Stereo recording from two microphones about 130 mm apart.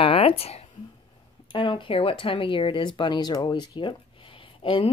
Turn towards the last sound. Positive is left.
turn(degrees=40)  # may be behind; listen again after turning